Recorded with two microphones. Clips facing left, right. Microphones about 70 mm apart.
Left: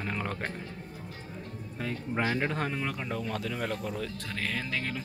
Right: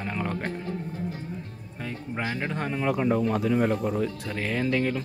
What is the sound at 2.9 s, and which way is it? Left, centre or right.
Speech, centre.